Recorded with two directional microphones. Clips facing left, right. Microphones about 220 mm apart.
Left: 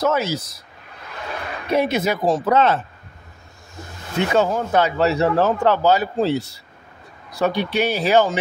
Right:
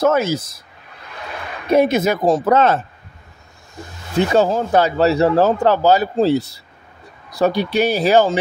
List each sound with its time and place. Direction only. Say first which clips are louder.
0.0 s speech: right 4 dB; 50° right (ahead or behind)
1.7 s speech: right 5 dB; 45° right (ahead or behind)
4.4 s a man's voice: right 2 dB; 35° right (ahead or behind)